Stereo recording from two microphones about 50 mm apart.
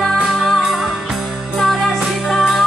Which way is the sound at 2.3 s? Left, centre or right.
Centre.